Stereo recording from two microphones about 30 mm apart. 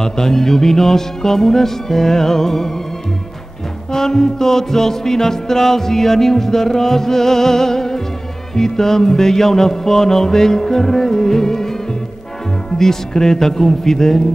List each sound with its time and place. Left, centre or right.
0.0 s music: centre
3.9 s music: centre
12.7 s music: centre